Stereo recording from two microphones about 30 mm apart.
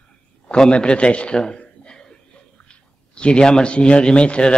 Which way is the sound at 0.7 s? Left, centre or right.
Left.